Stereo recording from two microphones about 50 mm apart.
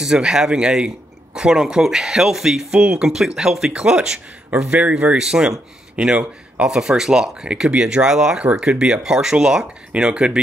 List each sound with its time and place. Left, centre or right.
0.0 s speech: centre
2.7 s speech: right
4.5 s speech: right
4.9 s speech: centre
6.6 s speech: centre